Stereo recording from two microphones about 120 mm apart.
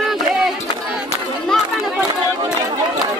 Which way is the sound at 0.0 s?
Centre (ahead or behind).